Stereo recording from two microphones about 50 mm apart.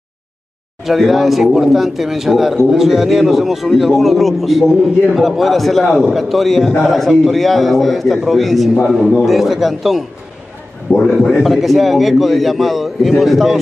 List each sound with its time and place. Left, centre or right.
0.8 s speech: centre
10.9 s a man's voice: left
11.4 s speech: centre